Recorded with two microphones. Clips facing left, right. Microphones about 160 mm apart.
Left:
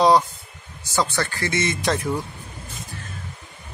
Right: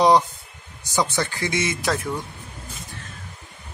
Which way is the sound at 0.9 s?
15° right (ahead or behind).